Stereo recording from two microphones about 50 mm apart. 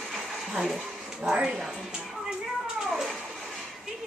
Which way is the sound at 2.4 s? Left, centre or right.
Centre.